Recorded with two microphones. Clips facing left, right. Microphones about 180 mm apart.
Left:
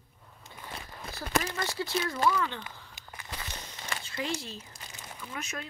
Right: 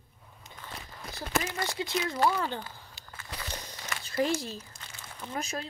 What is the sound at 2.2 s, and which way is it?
Speech, 40° right (ahead or behind).